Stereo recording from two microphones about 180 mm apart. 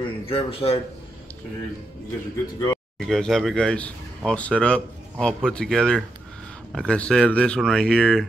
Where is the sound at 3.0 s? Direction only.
Centre (ahead or behind).